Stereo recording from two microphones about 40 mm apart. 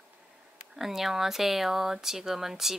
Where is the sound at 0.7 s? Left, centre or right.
Centre.